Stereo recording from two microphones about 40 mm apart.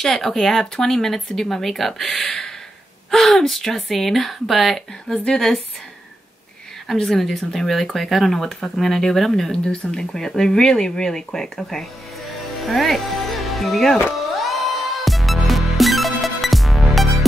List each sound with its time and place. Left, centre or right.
0.0 s speech: centre
5.1 s speech: centre
6.9 s speech: centre
12.6 s music: centre
15.0 s music: centre